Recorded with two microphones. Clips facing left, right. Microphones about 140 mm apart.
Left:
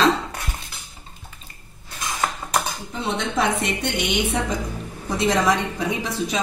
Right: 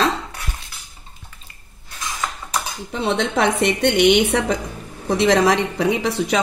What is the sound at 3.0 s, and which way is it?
A woman's voice, 65° right (ahead or behind).